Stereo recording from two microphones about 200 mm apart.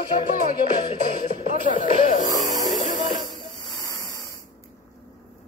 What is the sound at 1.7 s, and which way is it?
Music, 35° left (ahead or behind).